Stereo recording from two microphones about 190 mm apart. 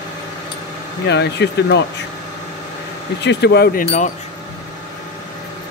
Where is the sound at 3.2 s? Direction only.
65° left (ahead or behind).